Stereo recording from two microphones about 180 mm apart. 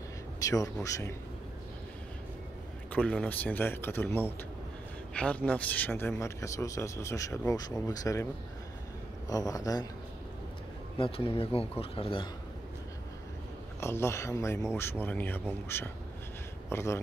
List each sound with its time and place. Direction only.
0.4 s speech: 20° left (ahead or behind)
2.9 s speech: 5° left (ahead or behind)
9.3 s speech: 20° left (ahead or behind)
11.0 s speech: 30° left (ahead or behind)
13.7 s speech: 15° left (ahead or behind)